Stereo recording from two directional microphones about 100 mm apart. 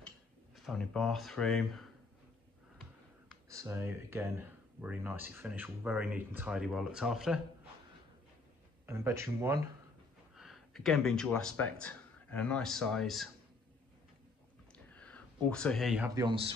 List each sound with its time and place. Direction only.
0.6 s speech: centre (ahead or behind)
3.4 s speech: 30° right (ahead or behind)
6.5 s speech: 5° right (ahead or behind)
8.8 s speech: 25° right (ahead or behind)
10.3 s speech: centre (ahead or behind)
14.9 s a sound: 15° left (ahead or behind)